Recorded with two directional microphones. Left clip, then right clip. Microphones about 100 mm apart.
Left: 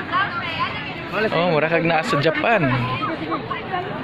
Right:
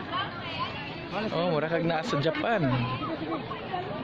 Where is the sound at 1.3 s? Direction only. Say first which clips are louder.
Left 8 dB; 20° right (ahead or behind).